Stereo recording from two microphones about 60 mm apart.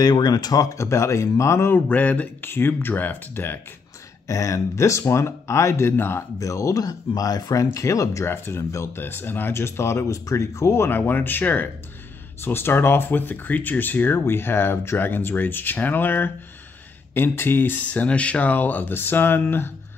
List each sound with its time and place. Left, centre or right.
0.0 s speech: left
1.7 s speech: left
4.3 s speech: left
5.9 s speech: left
6.4 s speech: left
8.3 s speech: left
10.7 s speech: left